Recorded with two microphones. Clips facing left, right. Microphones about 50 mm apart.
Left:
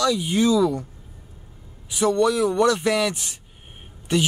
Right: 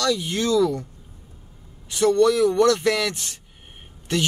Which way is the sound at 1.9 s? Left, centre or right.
Centre.